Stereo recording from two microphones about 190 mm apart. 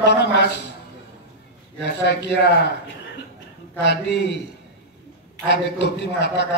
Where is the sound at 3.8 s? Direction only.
65° left (ahead or behind).